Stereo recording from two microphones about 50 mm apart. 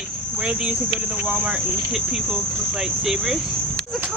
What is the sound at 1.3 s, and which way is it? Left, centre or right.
Speech, right.